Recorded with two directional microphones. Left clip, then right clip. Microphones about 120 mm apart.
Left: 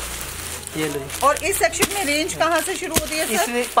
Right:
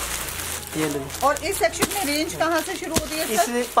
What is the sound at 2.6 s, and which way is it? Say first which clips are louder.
Speech: left 3 dB; centre (ahead or behind).